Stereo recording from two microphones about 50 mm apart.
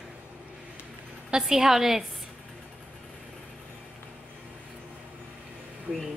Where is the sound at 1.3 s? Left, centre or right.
Centre.